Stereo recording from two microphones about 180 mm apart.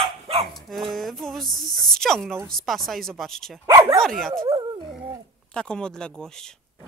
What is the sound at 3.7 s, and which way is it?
Dog, 20° right (ahead or behind).